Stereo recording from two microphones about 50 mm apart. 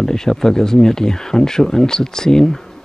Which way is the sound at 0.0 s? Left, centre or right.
Centre.